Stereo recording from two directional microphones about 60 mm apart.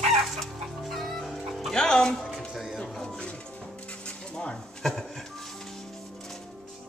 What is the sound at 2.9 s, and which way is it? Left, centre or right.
Music, centre.